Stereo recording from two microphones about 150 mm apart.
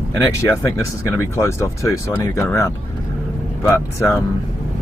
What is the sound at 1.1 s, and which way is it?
Speech, 15° left (ahead or behind).